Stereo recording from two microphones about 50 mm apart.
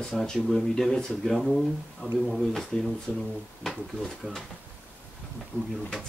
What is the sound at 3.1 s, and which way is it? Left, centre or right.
Speech, right.